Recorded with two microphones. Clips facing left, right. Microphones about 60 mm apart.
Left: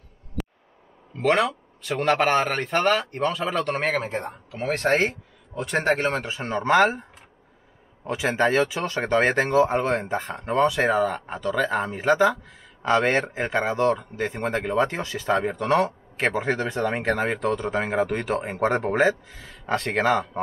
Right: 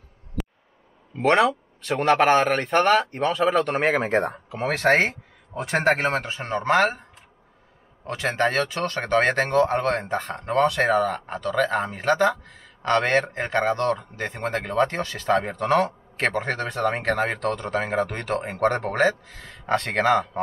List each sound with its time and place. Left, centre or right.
0.4 s a sound: centre
1.1 s speech: centre
4.6 s speech: right
5.8 s speech: centre